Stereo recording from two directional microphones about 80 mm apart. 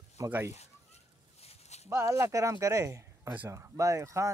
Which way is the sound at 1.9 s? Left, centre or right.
Right.